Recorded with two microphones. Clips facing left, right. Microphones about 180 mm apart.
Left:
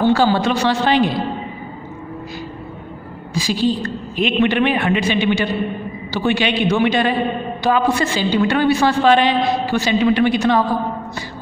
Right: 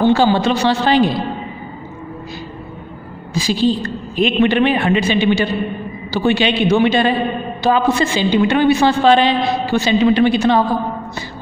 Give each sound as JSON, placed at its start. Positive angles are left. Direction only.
{"t": 0.0, "sound": "a woman's voice", "side_deg": -20}
{"t": 3.4, "sound": "a woman's voice", "side_deg": -30}